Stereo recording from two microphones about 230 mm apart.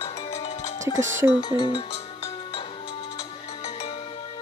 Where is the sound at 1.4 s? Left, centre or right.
Centre.